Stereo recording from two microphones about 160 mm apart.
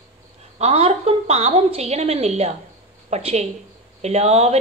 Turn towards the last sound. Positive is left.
turn(degrees=-40)  # may be behind; listen again after turning